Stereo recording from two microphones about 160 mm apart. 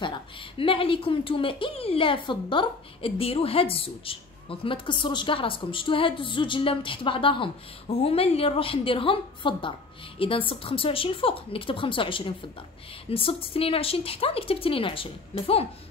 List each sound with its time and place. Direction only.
0.0 s a woman's voice: 30° left (ahead or behind)